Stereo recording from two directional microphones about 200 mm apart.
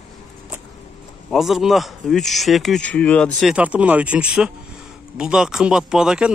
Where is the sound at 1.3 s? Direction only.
Centre (ahead or behind).